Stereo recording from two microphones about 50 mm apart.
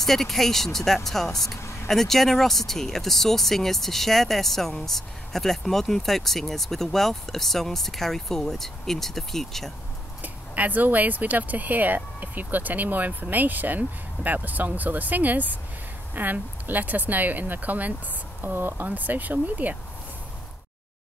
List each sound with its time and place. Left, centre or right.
0.0 s speech: centre
1.6 s vehicle: left
1.9 s speech: centre
10.2 s speech: right
18.4 s speech: right